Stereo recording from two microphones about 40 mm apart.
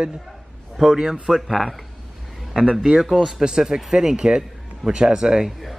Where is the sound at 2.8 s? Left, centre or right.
Centre.